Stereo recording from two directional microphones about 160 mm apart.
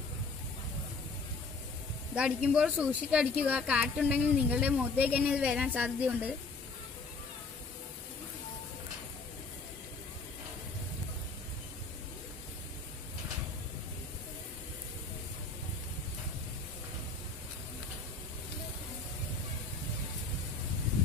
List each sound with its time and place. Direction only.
2.1 s a woman's voice: 5° right (ahead or behind)